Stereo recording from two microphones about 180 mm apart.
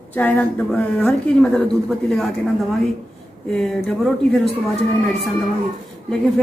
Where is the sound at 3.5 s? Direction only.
Centre (ahead or behind).